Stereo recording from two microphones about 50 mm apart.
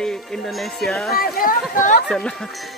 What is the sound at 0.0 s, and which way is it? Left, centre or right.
Speech, centre.